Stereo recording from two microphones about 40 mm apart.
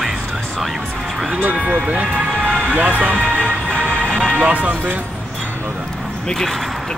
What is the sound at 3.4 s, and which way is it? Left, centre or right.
Music, left.